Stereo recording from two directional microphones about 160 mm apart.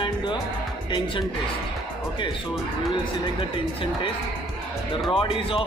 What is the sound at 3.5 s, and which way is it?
Speech, 30° left (ahead or behind).